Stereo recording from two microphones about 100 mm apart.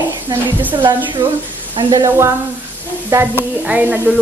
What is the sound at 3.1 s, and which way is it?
Speech, 25° right (ahead or behind).